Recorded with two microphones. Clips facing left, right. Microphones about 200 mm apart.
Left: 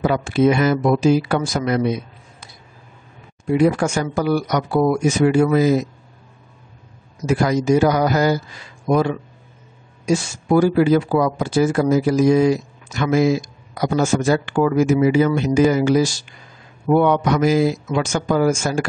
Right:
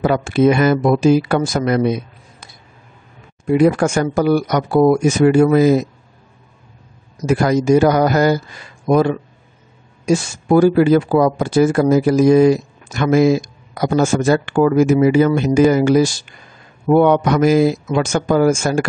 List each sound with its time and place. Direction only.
0.0 s speech: 55° right (ahead or behind)
3.5 s speech: 55° right (ahead or behind)
7.2 s speech: 55° right (ahead or behind)
10.6 s speech: 55° right (ahead or behind)